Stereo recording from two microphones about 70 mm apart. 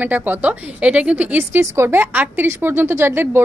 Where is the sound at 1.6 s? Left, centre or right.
Right.